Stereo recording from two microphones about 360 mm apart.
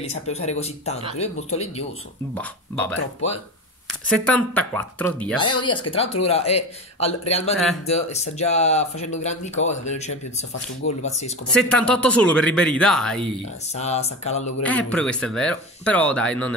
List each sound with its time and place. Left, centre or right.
0.0 s speech: centre
2.3 s speech: centre
4.1 s speech: centre
11.5 s speech: centre
13.7 s speech: centre
14.6 s speech: centre